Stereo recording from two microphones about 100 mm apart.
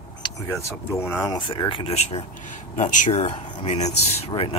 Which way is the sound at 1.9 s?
90° left.